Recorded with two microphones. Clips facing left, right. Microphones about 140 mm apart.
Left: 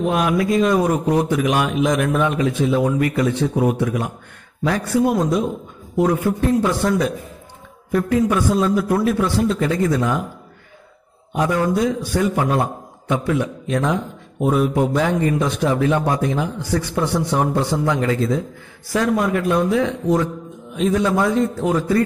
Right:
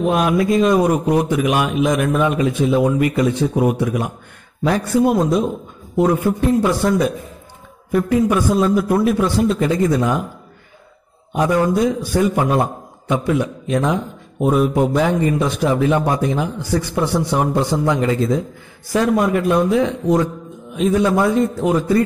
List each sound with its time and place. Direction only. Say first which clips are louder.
0.0 s a man's voice: right 2 dB; 20° right (ahead or behind); by 2.3 s 5° right (ahead or behind)
2.3 s a man's voice: right 2 dB; 15° right (ahead or behind)
6.6 s a man's voice: right 2 dB; 10° right (ahead or behind)
11.3 s a man's voice: right 2 dB; 15° right (ahead or behind)
15.0 s a man's voice: right 2 dB; 5° right (ahead or behind)
20.7 s a man's voice: right 2 dB; 5° right (ahead or behind)